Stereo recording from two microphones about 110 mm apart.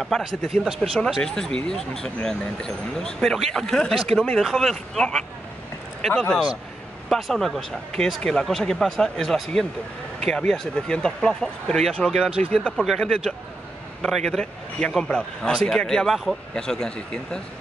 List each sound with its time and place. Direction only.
0.0 s a man's voice: centre (ahead or behind)
12.3 s speech: 60° right (ahead or behind)
12.5 s a man's voice: 5° left (ahead or behind)